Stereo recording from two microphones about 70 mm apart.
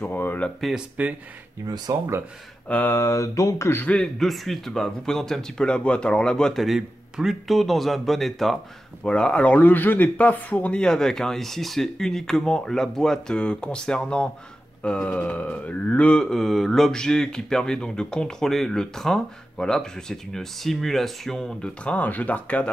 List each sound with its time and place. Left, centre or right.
0.0 s speech: left
0.6 s a man's voice: centre
1.9 s speech: right
2.7 s speech: left
3.0 s a sound: left
3.8 s speech: centre
4.2 s speech: centre
6.6 s a man's voice: centre
9.0 s speech: centre
16.2 s speech: centre; by 22.7 s left